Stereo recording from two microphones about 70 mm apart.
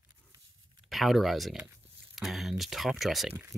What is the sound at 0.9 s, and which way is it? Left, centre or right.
Speech, centre.